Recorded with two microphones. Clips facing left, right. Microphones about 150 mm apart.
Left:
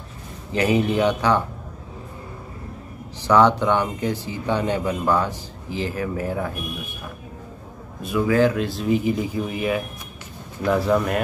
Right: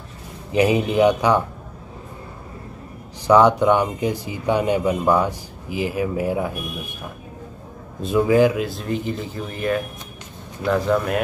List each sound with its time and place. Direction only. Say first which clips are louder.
0.5 s speech: right 2 dB; 15° right (ahead or behind)
3.3 s speech: right 3 dB; 10° right (ahead or behind)
8.0 s a man's voice: right 3 dB; 25° right (ahead or behind)
8.4 s speech: right 1 dB; 10° right (ahead or behind)
8.6 s speech: left 4 dB; centre (ahead or behind)